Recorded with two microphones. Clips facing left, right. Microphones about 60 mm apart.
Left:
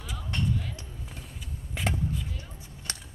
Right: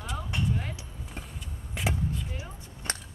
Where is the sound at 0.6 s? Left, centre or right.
Right.